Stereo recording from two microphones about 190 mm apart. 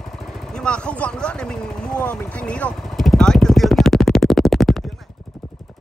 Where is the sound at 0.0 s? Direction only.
Centre (ahead or behind).